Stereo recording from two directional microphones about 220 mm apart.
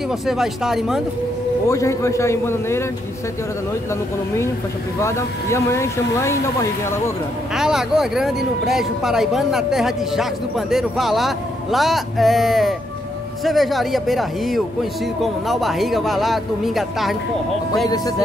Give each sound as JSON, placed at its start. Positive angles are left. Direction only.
{"t": 0.3, "sound": "speech", "side_deg": 0}
{"t": 1.7, "sound": "speech", "side_deg": 15}
{"t": 5.0, "sound": "speech", "side_deg": 10}
{"t": 7.5, "sound": "speech", "side_deg": 0}
{"t": 17.8, "sound": "speech", "side_deg": 15}